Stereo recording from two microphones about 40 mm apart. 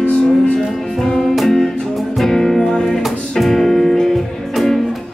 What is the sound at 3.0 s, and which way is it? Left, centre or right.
Music, centre.